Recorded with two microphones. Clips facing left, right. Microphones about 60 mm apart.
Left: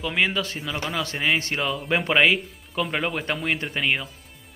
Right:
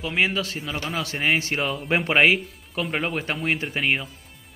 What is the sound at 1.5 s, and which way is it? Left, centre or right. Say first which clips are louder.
Speech: even; centre.